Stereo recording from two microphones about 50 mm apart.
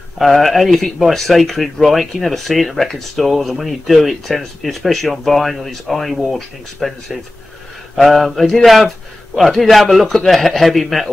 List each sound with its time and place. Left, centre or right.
0.2 s speech: centre